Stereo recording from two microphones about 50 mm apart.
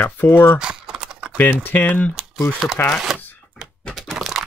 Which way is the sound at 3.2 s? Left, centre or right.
Left.